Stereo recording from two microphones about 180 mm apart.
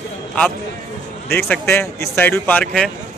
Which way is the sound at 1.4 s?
10° left (ahead or behind).